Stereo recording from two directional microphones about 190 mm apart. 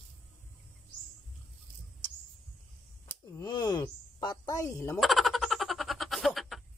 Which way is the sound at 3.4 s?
20° left (ahead or behind).